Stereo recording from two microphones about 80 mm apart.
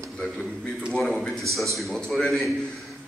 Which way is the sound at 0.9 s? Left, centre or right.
Centre.